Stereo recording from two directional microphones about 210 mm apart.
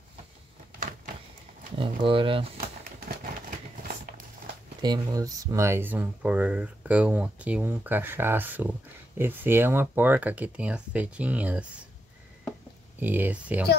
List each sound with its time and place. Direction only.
1.8 s speech: 25° right (ahead or behind)
3.4 s a sound: 40° right (ahead or behind)
4.8 s speech: 20° right (ahead or behind)
13.0 s speech: 10° right (ahead or behind)